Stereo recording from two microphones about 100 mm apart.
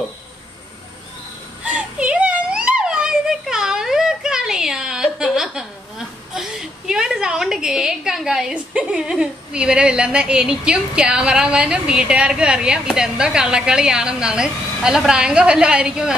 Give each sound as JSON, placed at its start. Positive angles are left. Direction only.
{"t": 1.6, "sound": "a child's voice", "side_deg": -10}